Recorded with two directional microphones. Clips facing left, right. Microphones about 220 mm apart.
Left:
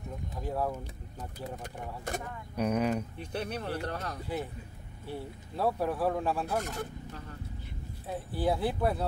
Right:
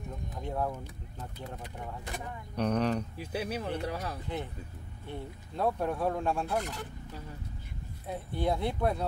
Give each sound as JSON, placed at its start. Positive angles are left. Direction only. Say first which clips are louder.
{"t": 0.4, "sound": "speech", "louder": "left 1 dB", "side_deg": 5}
{"t": 1.6, "sound": "speech", "louder": "left 1 dB", "side_deg": 45}
{"t": 2.5, "sound": "speech", "louder": "even", "side_deg": 5}
{"t": 3.2, "sound": "speech", "louder": "right 1 dB", "side_deg": -5}
{"t": 5.0, "sound": "speech", "louder": "left 2 dB", "side_deg": 5}
{"t": 6.6, "sound": "speech", "louder": "left 3 dB", "side_deg": 45}
{"t": 8.1, "sound": "speech", "louder": "left 1 dB", "side_deg": 5}